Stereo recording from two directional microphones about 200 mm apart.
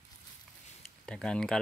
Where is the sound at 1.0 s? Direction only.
5° left (ahead or behind).